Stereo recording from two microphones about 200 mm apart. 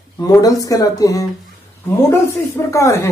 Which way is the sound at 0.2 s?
20° left (ahead or behind).